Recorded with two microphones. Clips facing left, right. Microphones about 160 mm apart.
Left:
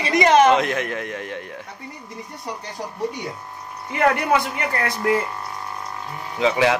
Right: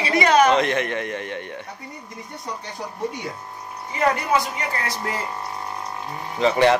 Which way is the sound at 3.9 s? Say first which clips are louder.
Left 2 dB; 60° left (ahead or behind).